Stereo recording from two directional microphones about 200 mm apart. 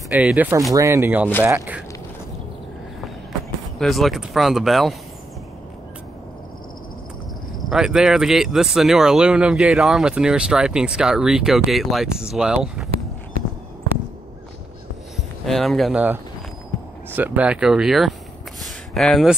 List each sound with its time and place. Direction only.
0.1 s speech: 5° right (ahead or behind)
3.8 s speech: centre (ahead or behind)
7.7 s speech: 5° right (ahead or behind)
15.1 s speech: centre (ahead or behind)
18.6 s a sound: centre (ahead or behind)